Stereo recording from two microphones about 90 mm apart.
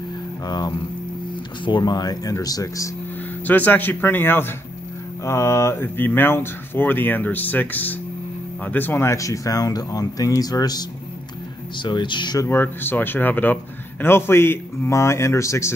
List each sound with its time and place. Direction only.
0.5 s speech: 50° left (ahead or behind)
3.4 s speech: 20° left (ahead or behind); by 10.9 s 45° left (ahead or behind)
11.8 s speech: 60° left (ahead or behind)
12.4 s speech: 25° left (ahead or behind)